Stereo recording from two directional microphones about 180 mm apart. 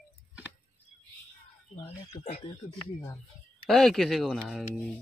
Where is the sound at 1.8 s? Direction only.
35° left (ahead or behind).